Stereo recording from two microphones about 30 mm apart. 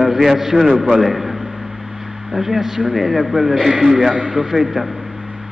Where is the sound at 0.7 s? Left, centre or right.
Right.